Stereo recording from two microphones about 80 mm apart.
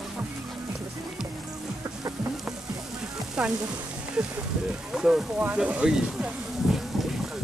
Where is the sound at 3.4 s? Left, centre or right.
Centre.